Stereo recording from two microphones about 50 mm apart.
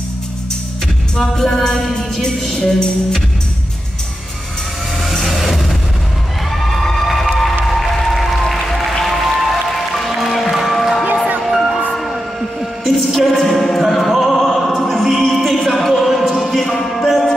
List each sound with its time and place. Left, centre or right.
1.1 s music: centre
5.0 s vehicle: centre
6.6 s a sound: centre
7.7 s applause: centre
9.0 s music: centre